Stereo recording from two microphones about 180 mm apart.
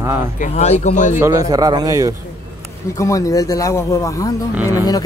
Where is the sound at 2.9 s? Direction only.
15° left (ahead or behind).